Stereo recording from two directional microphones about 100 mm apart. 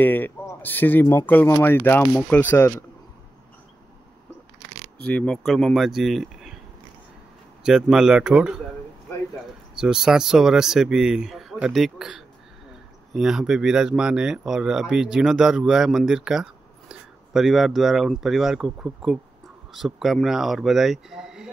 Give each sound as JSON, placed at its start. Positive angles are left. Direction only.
{"t": 0.0, "sound": "speech", "side_deg": 20}
{"t": 4.9, "sound": "speech", "side_deg": 10}
{"t": 5.4, "sound": "speech", "side_deg": 0}
{"t": 7.6, "sound": "speech", "side_deg": -5}
{"t": 9.8, "sound": "speech", "side_deg": -5}